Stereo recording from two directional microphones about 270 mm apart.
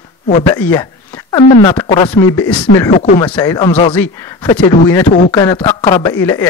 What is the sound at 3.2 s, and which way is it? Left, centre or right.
Speech, centre.